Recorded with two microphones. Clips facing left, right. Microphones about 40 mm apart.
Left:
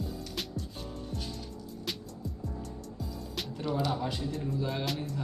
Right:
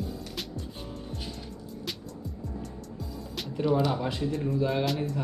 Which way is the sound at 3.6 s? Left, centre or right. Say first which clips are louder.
Right 6 dB; centre.